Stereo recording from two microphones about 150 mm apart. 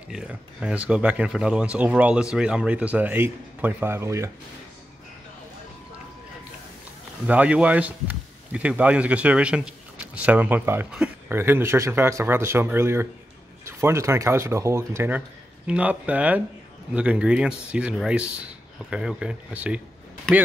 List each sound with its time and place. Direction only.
0.1 s speech: 5° right (ahead or behind)
7.2 s speech: 10° right (ahead or behind)
11.3 s speech: 15° right (ahead or behind)